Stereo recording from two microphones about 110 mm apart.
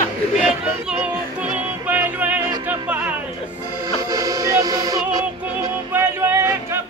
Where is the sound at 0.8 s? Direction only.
10° right (ahead or behind).